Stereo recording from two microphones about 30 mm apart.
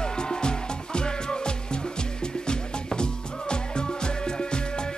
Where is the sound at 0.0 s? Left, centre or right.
Left.